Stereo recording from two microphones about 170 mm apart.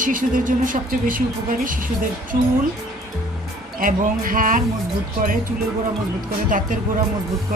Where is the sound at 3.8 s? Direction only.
55° right (ahead or behind).